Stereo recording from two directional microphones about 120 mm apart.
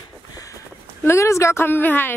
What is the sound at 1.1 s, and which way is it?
Speech, 25° left (ahead or behind).